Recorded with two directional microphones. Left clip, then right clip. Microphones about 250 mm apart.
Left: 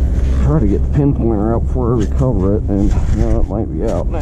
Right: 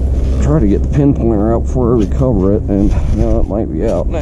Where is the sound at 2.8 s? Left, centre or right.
Centre.